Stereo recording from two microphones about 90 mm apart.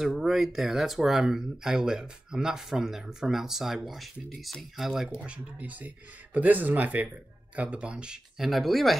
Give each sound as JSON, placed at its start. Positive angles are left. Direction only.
{"t": 0.0, "sound": "speech", "side_deg": 0}